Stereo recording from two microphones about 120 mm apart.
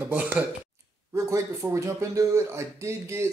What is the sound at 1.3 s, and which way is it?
Speech, 25° right (ahead or behind).